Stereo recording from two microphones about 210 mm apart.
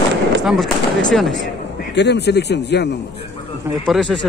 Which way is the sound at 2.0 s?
55° left (ahead or behind).